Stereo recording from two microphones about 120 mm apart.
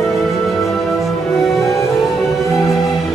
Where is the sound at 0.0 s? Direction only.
Centre (ahead or behind).